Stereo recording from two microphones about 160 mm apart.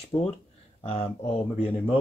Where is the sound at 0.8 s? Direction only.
35° left (ahead or behind).